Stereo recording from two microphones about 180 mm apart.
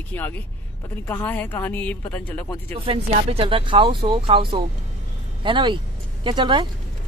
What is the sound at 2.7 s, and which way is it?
Speech, 30° right (ahead or behind).